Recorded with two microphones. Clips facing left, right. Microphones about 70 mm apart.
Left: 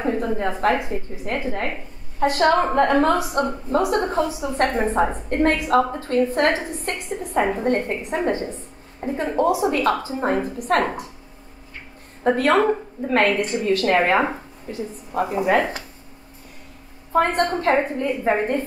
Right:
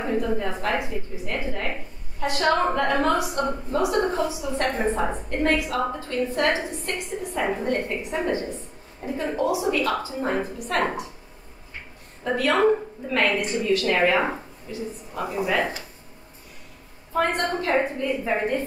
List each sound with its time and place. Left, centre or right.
0.2 s a woman's voice: left
12.2 s a woman's voice: left
17.1 s a woman's voice: left